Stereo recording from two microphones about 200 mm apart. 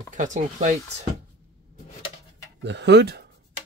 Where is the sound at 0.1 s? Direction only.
40° right (ahead or behind).